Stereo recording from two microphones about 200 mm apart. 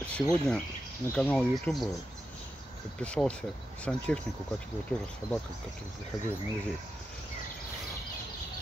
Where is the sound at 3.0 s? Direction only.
5° left (ahead or behind).